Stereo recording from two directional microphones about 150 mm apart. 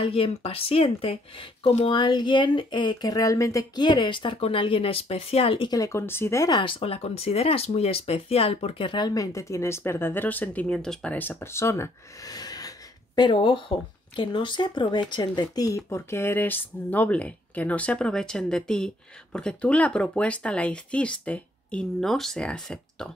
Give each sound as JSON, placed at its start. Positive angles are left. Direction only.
{"t": 0.0, "sound": "speech", "side_deg": 40}
{"t": 1.9, "sound": "speech", "side_deg": 30}
{"t": 5.7, "sound": "speech", "side_deg": 20}